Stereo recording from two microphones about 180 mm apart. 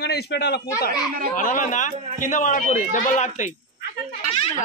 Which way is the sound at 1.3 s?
45° left (ahead or behind).